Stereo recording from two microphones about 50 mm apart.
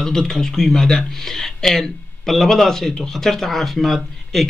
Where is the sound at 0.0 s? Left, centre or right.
Centre.